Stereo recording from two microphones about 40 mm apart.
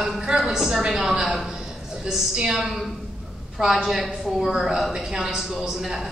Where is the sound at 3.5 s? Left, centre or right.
Centre.